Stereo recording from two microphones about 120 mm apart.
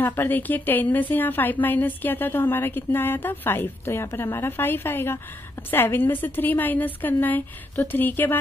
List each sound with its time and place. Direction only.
0.0 s a woman's voice: 15° left (ahead or behind)